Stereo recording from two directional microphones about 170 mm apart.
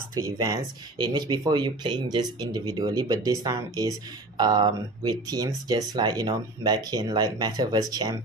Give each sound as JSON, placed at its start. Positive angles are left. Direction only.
{"t": 0.2, "sound": "speech", "side_deg": -20}